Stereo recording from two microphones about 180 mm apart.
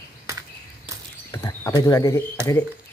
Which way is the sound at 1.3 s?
15° left (ahead or behind).